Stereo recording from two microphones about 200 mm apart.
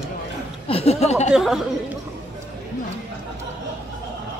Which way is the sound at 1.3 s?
Centre (ahead or behind).